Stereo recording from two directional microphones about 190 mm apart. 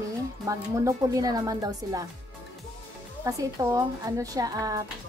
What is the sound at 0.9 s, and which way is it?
A woman's voice, 20° right (ahead or behind).